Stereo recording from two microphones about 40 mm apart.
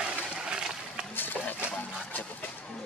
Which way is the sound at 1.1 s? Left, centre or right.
Left.